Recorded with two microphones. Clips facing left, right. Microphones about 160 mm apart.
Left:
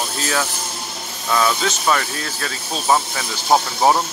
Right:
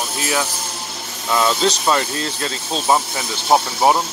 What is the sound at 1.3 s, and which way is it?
Speech, 20° right (ahead or behind).